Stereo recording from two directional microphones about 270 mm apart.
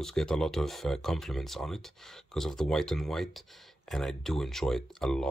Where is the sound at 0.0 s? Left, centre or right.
Centre.